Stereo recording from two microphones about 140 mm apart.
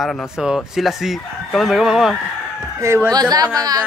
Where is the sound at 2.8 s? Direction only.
20° right (ahead or behind).